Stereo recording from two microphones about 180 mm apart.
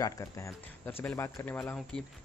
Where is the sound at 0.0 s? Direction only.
15° left (ahead or behind).